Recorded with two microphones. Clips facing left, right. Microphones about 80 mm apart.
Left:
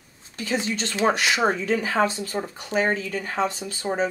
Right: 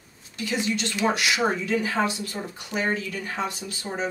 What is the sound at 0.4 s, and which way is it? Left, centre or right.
Speech, left.